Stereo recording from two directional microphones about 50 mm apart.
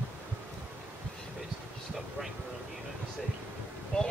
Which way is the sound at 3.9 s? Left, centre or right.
Centre.